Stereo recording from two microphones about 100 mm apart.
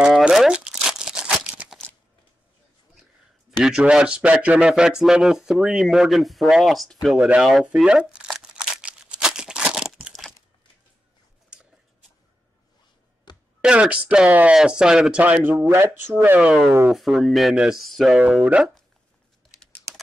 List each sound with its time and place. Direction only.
0.0 s crumpling: 5° right (ahead or behind)
3.6 s speech: 10° right (ahead or behind)
7.2 s speech: 10° right (ahead or behind)
8.4 s crumpling: 10° right (ahead or behind)
13.6 s speech: 10° right (ahead or behind)
16.3 s speech: 5° right (ahead or behind)